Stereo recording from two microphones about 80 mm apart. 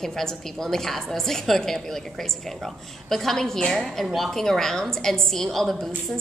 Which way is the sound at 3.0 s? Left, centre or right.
Centre.